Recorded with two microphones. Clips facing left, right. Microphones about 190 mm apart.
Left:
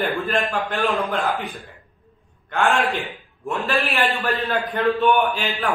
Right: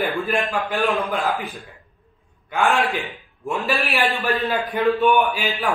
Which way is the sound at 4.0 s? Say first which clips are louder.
Right 1 dB; 15° right (ahead or behind).